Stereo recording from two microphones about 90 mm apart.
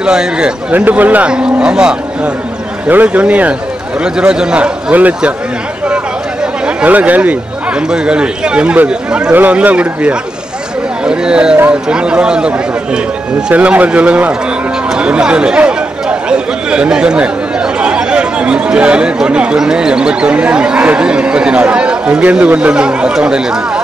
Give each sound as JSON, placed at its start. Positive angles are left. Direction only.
{"t": 0.0, "sound": "speech", "side_deg": -10}
{"t": 6.8, "sound": "speech", "side_deg": -15}
{"t": 15.0, "sound": "chatter", "side_deg": -10}
{"t": 17.7, "sound": "speech", "side_deg": -10}